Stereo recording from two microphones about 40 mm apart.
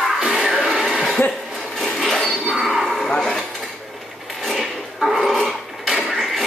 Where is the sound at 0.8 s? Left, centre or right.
Centre.